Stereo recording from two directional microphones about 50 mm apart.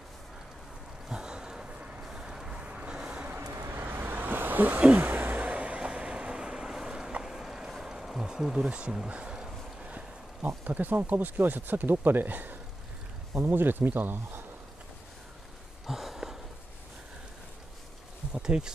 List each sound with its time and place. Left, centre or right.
1.0 s a sound: centre
1.8 s vehicle: right
2.0 s vehicle: centre
3.5 s vehicle: right
3.8 s vehicle: right
4.9 s a sound: right
5.4 s vehicle: right; by 7.7 s centre
7.8 s a sound: centre
8.6 s speech: right
10.4 s speech: right
15.9 s a sound: centre
18.3 s speech: centre